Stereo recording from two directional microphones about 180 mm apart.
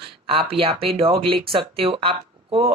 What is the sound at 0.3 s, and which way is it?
Speech, 30° right (ahead or behind).